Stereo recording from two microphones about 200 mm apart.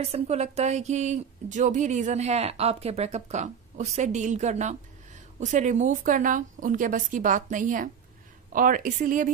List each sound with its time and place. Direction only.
0.0 s speech: 30° right (ahead or behind)